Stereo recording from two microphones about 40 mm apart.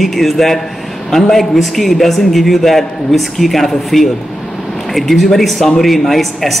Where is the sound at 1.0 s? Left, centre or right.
Centre.